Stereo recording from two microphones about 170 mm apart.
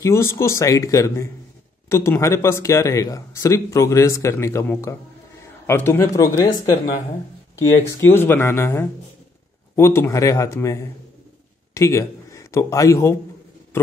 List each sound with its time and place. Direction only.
0.0 s a man's voice: 15° left (ahead or behind)
7.5 s a man's voice: 15° left (ahead or behind)